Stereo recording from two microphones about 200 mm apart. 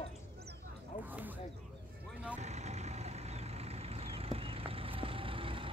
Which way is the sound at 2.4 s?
35° right (ahead or behind).